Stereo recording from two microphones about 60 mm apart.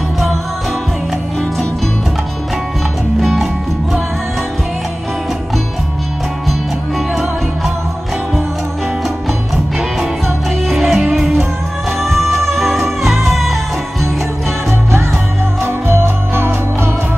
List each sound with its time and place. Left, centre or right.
3.2 s music: centre
10.7 s music: centre
15.6 s music: right